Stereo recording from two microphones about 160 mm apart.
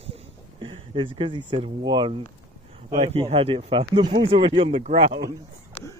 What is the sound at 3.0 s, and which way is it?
Speech, 40° right (ahead or behind).